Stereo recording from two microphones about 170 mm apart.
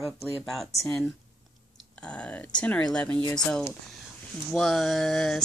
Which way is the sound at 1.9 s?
5° left (ahead or behind).